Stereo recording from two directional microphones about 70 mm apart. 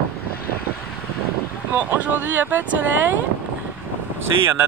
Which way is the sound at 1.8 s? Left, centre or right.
Right.